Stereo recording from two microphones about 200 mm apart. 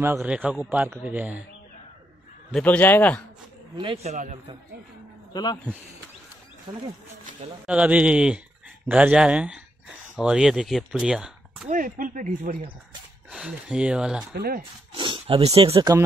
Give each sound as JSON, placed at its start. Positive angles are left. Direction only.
{"t": 0.0, "sound": "a man's voice", "side_deg": -10}
{"t": 2.5, "sound": "a man's voice", "side_deg": 5}
{"t": 3.7, "sound": "speech", "side_deg": -25}
{"t": 5.3, "sound": "speech", "side_deg": 20}
{"t": 6.7, "sound": "speech", "side_deg": -25}
{"t": 7.6, "sound": "speech", "side_deg": -5}
{"t": 11.7, "sound": "speech", "side_deg": -40}
{"t": 13.3, "sound": "speech", "side_deg": -5}
{"t": 14.3, "sound": "speech", "side_deg": -50}
{"t": 15.0, "sound": "speech", "side_deg": -25}